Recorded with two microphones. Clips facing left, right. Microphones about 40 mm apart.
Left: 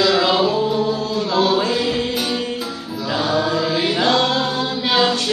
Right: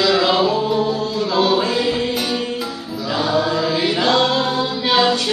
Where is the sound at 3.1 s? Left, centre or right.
Centre.